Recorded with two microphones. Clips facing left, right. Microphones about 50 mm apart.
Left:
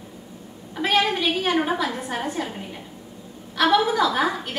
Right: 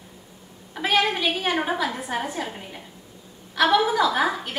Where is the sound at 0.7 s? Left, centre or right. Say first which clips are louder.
Left 1 dB; centre.